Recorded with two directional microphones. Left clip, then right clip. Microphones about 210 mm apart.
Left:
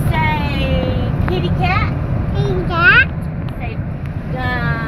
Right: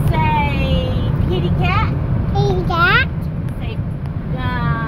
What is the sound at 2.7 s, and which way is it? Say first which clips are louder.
Vehicle: left 4 dB; 5° left (ahead or behind).